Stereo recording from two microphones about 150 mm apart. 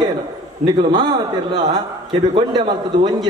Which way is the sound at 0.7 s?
30° right (ahead or behind).